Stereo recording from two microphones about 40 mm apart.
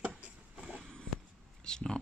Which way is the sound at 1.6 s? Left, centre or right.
Centre.